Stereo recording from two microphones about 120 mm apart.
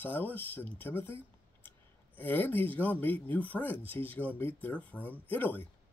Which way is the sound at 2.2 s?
15° left (ahead or behind).